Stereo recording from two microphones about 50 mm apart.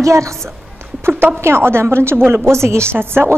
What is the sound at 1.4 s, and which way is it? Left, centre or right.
A woman's voice, right.